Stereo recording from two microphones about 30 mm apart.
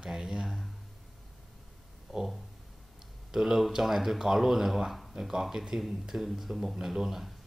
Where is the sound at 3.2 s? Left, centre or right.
Centre.